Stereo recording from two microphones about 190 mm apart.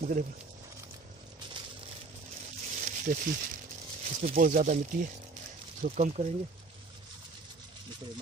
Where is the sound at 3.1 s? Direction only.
40° right (ahead or behind).